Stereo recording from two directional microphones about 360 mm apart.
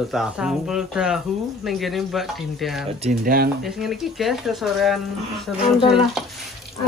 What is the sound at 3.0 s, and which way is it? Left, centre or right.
Speech, right.